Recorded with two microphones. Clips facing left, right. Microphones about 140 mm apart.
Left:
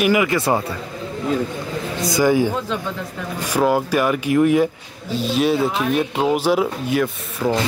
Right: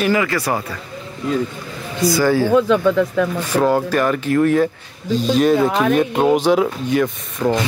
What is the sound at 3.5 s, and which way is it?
Speech, 10° left (ahead or behind).